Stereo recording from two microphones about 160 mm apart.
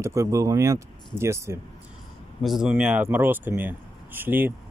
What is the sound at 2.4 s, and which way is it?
Speech, centre (ahead or behind).